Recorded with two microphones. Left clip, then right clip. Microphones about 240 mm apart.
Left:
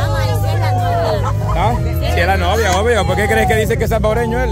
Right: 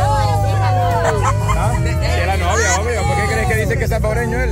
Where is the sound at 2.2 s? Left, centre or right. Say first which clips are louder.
Left 5 dB; centre.